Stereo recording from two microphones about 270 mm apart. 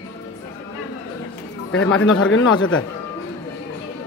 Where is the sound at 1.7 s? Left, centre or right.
Left.